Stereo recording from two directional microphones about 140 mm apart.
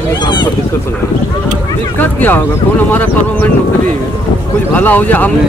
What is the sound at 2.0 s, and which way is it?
Speech, 15° left (ahead or behind).